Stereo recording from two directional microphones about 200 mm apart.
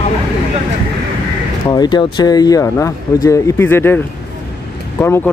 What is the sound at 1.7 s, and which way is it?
Speech, 20° left (ahead or behind).